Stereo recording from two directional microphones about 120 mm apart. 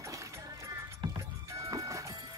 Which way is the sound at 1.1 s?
30° right (ahead or behind).